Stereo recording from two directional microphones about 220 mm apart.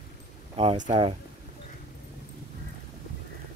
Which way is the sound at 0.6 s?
25° right (ahead or behind).